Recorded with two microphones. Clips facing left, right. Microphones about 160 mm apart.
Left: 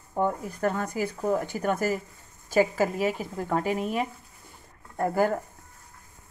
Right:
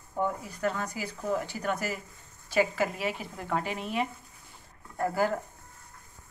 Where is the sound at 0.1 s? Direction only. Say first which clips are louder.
Left 4 dB; 50° left (ahead or behind).